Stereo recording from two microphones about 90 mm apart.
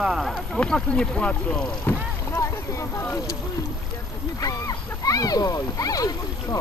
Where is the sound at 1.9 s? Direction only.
25° left (ahead or behind).